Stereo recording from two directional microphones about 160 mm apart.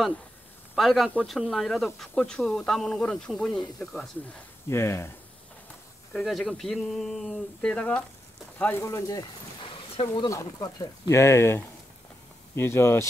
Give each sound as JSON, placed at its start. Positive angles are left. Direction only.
{"t": 0.7, "sound": "speech", "side_deg": 0}
{"t": 4.6, "sound": "speech", "side_deg": 15}
{"t": 6.1, "sound": "speech", "side_deg": 5}
{"t": 9.6, "sound": "speech", "side_deg": 35}